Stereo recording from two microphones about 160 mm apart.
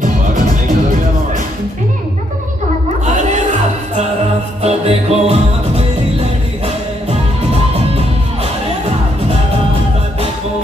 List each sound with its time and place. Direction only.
4.6 s music: 40° right (ahead or behind)